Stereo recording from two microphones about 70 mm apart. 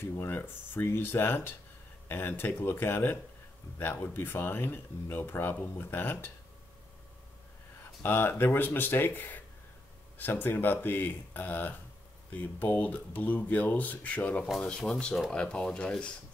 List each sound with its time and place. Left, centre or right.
0.0 s speech: left
8.0 s speech: left; by 16.1 s centre